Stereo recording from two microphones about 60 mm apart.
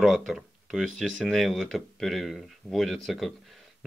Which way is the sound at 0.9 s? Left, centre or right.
Centre.